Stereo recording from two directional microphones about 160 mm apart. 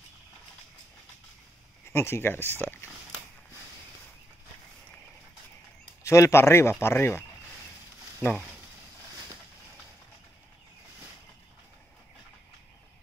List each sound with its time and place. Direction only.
1.9 s speech: 15° left (ahead or behind)
6.0 s speech: 20° left (ahead or behind)